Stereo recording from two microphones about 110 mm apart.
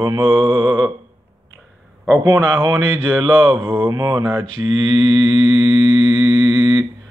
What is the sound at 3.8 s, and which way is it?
Speech, 40° right (ahead or behind).